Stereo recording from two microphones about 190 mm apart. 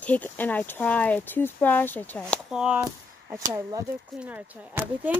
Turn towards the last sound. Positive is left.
turn(degrees=-10)  # may be behind; listen again after turning